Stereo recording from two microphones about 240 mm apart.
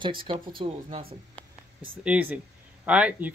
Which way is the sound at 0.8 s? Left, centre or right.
Right.